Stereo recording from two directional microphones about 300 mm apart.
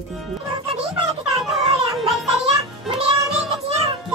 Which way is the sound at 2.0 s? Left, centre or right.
Centre.